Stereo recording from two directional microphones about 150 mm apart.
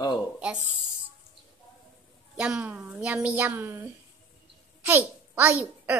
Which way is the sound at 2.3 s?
5° right (ahead or behind).